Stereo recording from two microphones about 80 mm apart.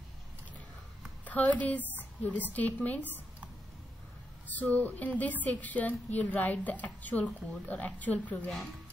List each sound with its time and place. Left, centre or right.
1.2 s a woman's voice: centre
4.5 s speech: left